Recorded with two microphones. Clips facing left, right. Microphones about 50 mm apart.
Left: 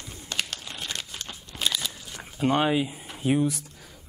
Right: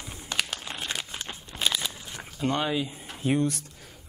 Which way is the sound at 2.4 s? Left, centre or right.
Centre.